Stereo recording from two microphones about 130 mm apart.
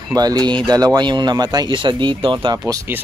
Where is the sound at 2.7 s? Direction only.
25° right (ahead or behind).